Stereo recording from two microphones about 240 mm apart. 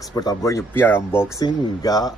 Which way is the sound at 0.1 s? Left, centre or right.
Centre.